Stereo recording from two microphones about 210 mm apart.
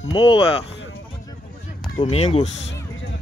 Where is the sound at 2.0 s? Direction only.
25° left (ahead or behind).